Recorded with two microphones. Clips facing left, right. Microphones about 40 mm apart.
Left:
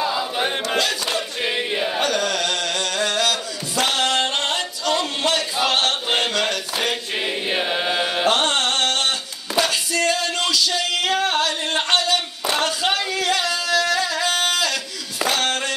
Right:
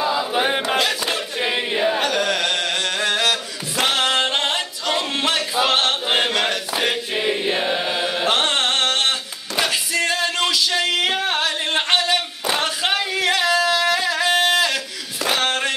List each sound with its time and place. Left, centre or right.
0.0 s choir: centre
0.3 s a sound: centre
5.6 s choir: centre
7.4 s chant: centre
8.3 s music: centre
15.2 s a sound: centre